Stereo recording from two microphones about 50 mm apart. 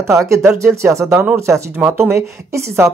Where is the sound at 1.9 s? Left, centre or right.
Right.